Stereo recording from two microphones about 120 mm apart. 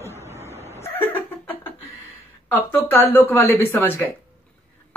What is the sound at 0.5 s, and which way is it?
Vehicle, 60° left (ahead or behind).